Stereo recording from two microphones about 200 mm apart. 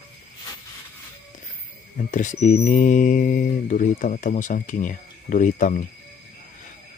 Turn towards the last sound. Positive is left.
turn(degrees=40)  # may be behind; listen again after turning